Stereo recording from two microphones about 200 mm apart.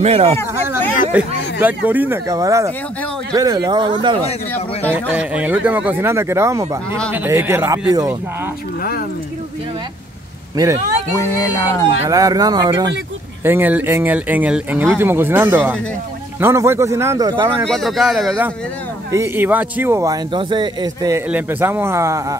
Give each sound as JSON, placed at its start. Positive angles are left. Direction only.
{"t": 0.0, "sound": "speech", "side_deg": -30}
{"t": 1.1, "sound": "speech", "side_deg": -10}
{"t": 4.9, "sound": "speech", "side_deg": -5}
{"t": 11.2, "sound": "speech", "side_deg": 15}
{"t": 12.1, "sound": "speech", "side_deg": -15}
{"t": 17.6, "sound": "speech", "side_deg": 0}
{"t": 19.1, "sound": "speech", "side_deg": -10}